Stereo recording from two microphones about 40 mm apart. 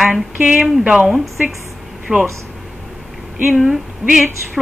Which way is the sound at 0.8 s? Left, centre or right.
Right.